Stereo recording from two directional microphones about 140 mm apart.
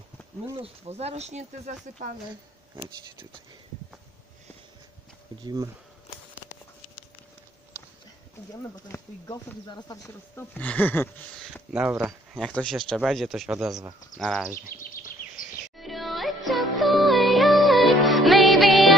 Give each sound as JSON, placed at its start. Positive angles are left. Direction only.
{"t": 0.6, "sound": "speech", "side_deg": -50}
{"t": 5.4, "sound": "speech", "side_deg": -30}
{"t": 7.7, "sound": "a sound", "side_deg": -10}
{"t": 8.8, "sound": "speech", "side_deg": 20}
{"t": 9.7, "sound": "speech", "side_deg": 30}
{"t": 10.3, "sound": "speech", "side_deg": 10}
{"t": 11.7, "sound": "speech", "side_deg": -10}
{"t": 12.4, "sound": "speech", "side_deg": 5}
{"t": 14.7, "sound": "speech", "side_deg": 90}
{"t": 15.8, "sound": "music", "side_deg": 0}